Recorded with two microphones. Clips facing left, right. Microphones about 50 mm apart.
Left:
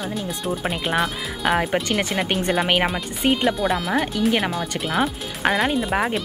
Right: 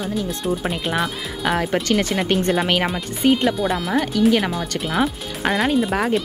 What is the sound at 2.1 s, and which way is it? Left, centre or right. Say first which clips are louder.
Speech: right 2 dB; centre.